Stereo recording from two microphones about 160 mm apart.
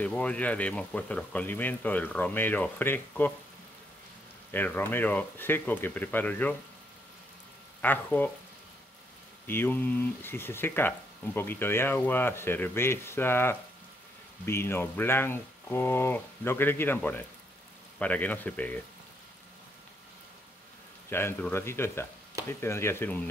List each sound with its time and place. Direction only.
0.0 s speech: 10° left (ahead or behind)
4.5 s speech: 10° left (ahead or behind)
7.8 s speech: 10° left (ahead or behind)
9.5 s speech: 15° left (ahead or behind)
21.1 s speech: 15° left (ahead or behind)